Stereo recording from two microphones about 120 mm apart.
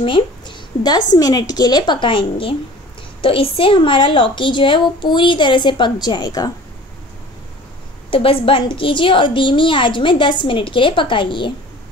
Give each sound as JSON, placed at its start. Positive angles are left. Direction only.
{"t": 0.0, "sound": "a woman's voice", "side_deg": 40}
{"t": 8.1, "sound": "a woman's voice", "side_deg": 50}